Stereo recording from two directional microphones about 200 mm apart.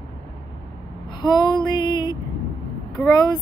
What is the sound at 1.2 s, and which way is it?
Speech, 20° left (ahead or behind).